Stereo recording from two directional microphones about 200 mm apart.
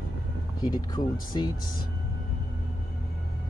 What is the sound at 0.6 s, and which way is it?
Speech, 20° left (ahead or behind).